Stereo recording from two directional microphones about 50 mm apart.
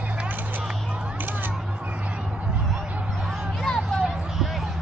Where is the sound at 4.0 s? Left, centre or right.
Centre.